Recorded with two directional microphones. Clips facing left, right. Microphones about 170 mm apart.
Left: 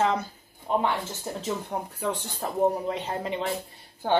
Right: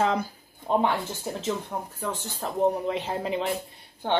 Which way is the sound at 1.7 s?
10° left (ahead or behind).